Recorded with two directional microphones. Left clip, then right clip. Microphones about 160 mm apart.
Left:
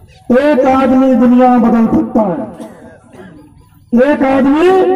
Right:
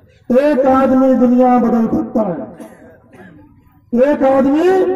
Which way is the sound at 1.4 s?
20° left (ahead or behind).